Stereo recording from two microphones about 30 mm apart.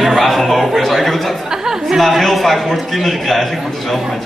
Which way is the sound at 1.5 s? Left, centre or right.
Centre.